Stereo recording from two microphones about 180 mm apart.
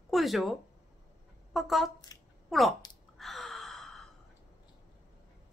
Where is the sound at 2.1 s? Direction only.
20° left (ahead or behind).